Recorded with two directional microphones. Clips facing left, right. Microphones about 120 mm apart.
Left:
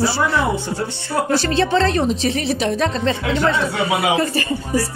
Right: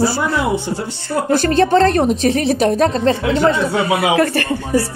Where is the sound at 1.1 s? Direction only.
50° right (ahead or behind).